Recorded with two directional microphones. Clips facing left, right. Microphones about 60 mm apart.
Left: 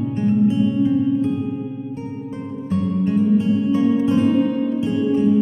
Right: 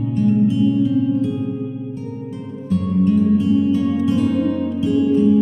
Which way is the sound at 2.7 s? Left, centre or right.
Left.